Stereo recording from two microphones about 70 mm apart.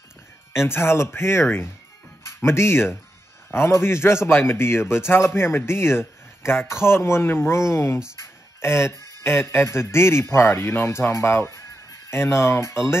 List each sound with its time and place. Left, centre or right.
0.7 s a man's voice: left